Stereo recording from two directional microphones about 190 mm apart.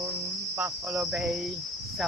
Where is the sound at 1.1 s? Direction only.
Centre (ahead or behind).